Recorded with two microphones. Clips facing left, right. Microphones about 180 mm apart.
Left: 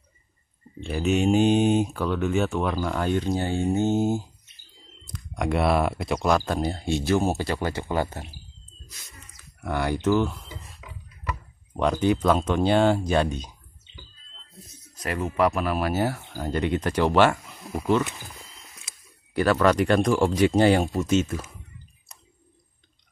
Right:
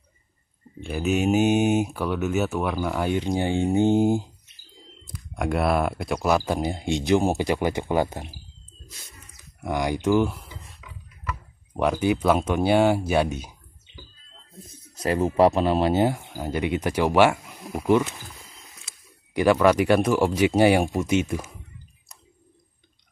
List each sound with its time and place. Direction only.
0.7 s speech: 5° right (ahead or behind)
5.0 s speech: 5° right (ahead or behind)
9.4 s speech: 15° right (ahead or behind)
10.8 s a sound: 40° left (ahead or behind)
11.7 s speech: 10° right (ahead or behind)
15.0 s speech: 30° right (ahead or behind)
19.3 s speech: 15° right (ahead or behind)